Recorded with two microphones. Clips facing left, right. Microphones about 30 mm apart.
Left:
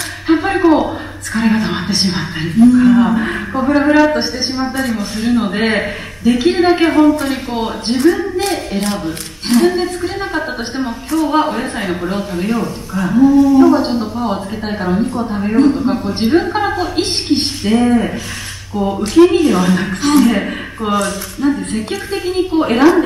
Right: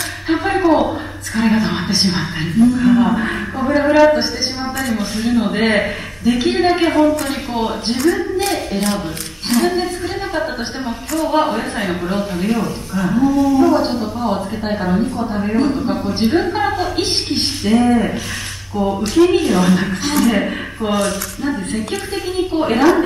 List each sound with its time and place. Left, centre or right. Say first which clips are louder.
0.3 s a woman's voice: left 3 dB; centre
5.1 s speech: left 2 dB; centre
8.2 s a woman's voice: left 1 dB; centre
20.1 s a man's voice: left 6 dB; left
20.3 s a woman's voice: even; centre